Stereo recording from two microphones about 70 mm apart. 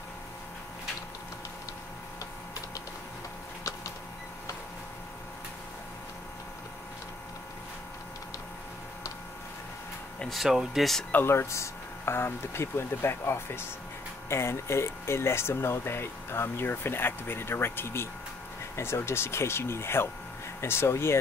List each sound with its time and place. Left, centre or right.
10.3 s speech: centre
11.1 s speech: left
11.3 s speech: left